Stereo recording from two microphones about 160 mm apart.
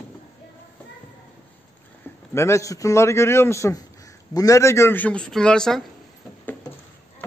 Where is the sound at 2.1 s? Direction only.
15° left (ahead or behind).